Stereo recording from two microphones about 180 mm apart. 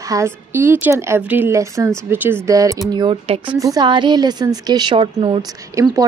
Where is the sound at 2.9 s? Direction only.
30° right (ahead or behind).